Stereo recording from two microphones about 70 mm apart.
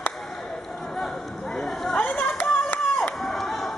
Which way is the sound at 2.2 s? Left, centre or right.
Left.